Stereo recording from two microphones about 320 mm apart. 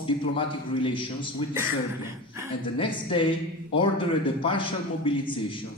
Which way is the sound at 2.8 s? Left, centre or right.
Centre.